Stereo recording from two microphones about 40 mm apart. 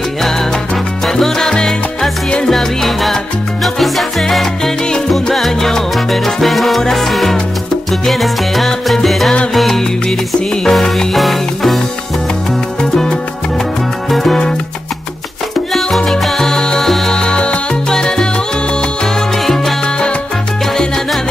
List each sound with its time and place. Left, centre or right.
1.0 s salsa music: centre
8.1 s music: centre
11.1 s music: centre
16.1 s salsa music: centre
17.1 s salsa music: left
19.4 s salsa music: centre